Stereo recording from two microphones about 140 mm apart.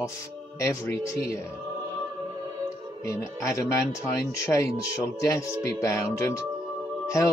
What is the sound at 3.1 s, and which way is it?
Speech, 20° left (ahead or behind).